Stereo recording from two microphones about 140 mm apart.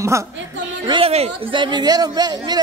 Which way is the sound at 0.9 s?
45° right (ahead or behind).